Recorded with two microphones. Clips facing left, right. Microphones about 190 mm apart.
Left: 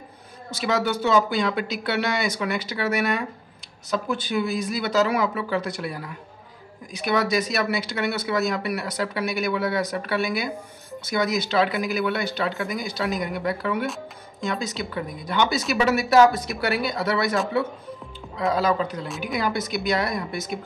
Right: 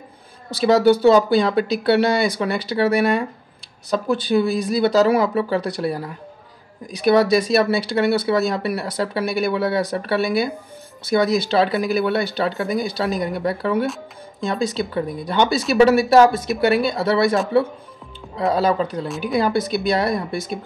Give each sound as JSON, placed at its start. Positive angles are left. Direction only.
{"t": 0.5, "sound": "speech", "side_deg": -35}
{"t": 18.4, "sound": "speech", "side_deg": -30}